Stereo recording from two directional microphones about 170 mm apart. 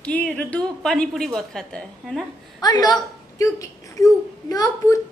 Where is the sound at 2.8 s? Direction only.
20° left (ahead or behind).